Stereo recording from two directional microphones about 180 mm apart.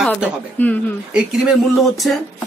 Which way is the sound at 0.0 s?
Centre (ahead or behind).